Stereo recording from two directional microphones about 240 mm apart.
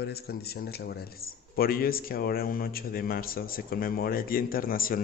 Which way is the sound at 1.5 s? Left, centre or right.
Left.